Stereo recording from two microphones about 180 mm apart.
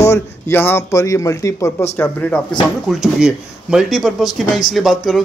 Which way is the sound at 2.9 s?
Centre (ahead or behind).